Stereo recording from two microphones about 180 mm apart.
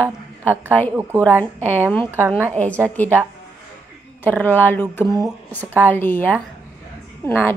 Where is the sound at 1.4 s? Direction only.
10° left (ahead or behind).